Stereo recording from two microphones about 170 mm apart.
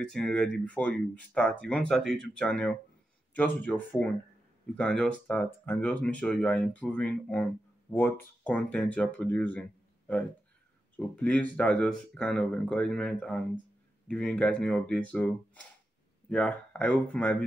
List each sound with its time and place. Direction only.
0.0 s speech: 5° left (ahead or behind)